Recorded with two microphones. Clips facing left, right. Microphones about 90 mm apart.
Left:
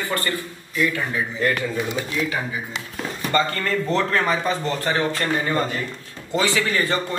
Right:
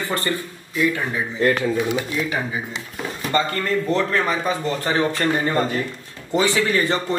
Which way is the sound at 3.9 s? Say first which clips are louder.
Left 1 dB; 5° right (ahead or behind).